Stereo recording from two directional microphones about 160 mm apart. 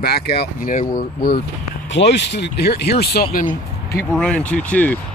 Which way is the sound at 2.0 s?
90° left.